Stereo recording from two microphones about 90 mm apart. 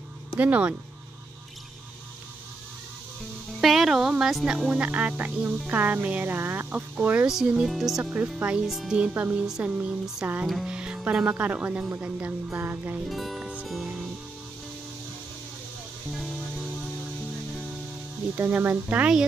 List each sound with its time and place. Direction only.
0.4 s speech: 15° right (ahead or behind)
3.6 s a sound: centre (ahead or behind)
4.2 s speech: 5° right (ahead or behind)
7.2 s speech: 5° right (ahead or behind)
8.0 s speech: 15° right (ahead or behind)
8.6 s speech: 5° right (ahead or behind)
9.1 s speech: 20° right (ahead or behind)
10.4 s speech: 5° right (ahead or behind)
12.4 s speech: 25° right (ahead or behind)
13.1 s speech: centre (ahead or behind)
13.7 s music: centre (ahead or behind)
18.3 s speech: 20° right (ahead or behind)